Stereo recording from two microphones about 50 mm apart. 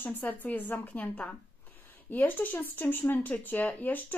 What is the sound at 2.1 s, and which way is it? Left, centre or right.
A woman's voice, left.